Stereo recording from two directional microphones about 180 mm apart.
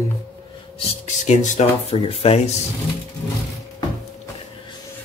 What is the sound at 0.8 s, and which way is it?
Speech, 40° left (ahead or behind).